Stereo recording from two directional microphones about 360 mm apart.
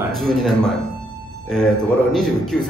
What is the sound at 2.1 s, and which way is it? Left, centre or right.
Speech, centre.